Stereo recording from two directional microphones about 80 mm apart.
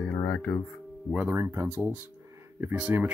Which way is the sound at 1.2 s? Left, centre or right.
Right.